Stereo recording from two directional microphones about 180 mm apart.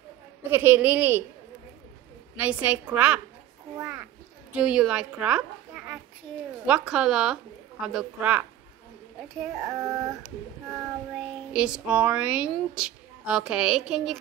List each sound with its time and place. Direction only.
0.5 s a woman's voice: 10° right (ahead or behind)
2.3 s a woman's voice: 10° right (ahead or behind)
9.7 s a woman's voice: 15° right (ahead or behind)
11.1 s speech: 5° right (ahead or behind)